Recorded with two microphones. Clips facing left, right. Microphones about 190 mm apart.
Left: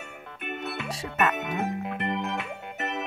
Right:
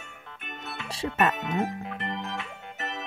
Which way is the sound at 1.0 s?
30° right (ahead or behind).